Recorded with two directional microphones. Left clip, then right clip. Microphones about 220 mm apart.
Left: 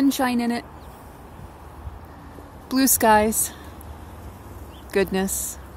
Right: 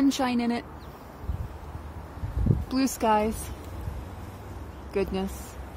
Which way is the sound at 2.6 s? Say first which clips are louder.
Left 7 dB; 15° left (ahead or behind).